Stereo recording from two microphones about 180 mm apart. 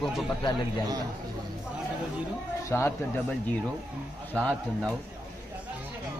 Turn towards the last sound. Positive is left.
turn(degrees=5)  # may be behind; listen again after turning